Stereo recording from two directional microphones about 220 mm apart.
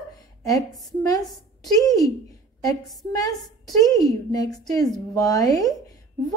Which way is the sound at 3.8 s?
15° left (ahead or behind).